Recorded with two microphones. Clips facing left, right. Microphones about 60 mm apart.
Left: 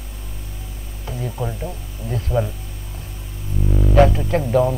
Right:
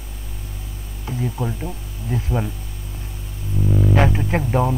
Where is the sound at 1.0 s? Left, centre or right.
Centre.